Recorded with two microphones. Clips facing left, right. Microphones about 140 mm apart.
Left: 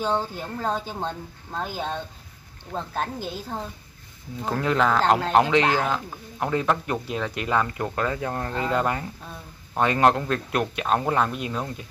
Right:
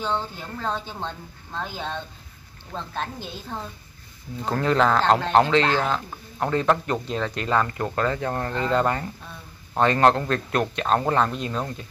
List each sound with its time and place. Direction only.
0.2 s speech: 10° left (ahead or behind)
2.7 s speech: 40° left (ahead or behind)
4.5 s speech: 5° left (ahead or behind)